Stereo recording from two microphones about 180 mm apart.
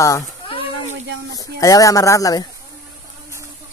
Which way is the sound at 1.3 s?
20° left (ahead or behind).